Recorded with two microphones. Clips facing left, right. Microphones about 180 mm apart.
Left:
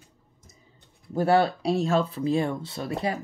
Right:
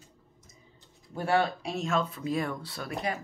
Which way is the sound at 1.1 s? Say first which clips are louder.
Left 6 dB; 35° left (ahead or behind).